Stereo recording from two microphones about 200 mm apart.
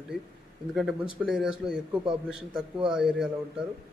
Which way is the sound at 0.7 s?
Centre (ahead or behind).